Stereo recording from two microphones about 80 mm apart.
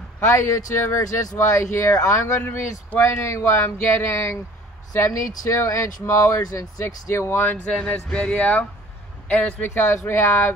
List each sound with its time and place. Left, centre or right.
0.3 s speech: left
2.4 s speech: left
7.6 s speech: centre; by 10.5 s left